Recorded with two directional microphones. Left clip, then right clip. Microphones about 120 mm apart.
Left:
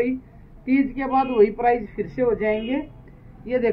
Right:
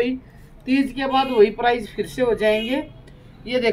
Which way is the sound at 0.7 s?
25° right (ahead or behind).